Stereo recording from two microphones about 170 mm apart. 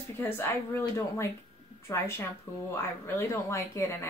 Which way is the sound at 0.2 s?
15° left (ahead or behind).